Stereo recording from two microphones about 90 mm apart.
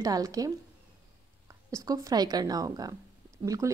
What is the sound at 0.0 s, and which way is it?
Speech, 40° right (ahead or behind).